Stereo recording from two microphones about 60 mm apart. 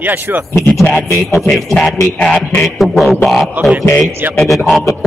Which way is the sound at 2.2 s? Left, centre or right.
Centre.